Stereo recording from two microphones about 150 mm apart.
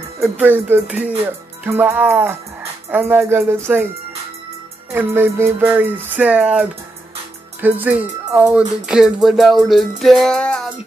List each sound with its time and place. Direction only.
0.2 s music: 15° right (ahead or behind)
4.9 s music: 15° right (ahead or behind)
7.6 s speech: 10° right (ahead or behind); by 10.7 s 5° left (ahead or behind)